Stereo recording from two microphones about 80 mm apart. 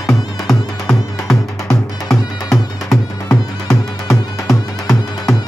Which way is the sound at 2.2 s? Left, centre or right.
Left.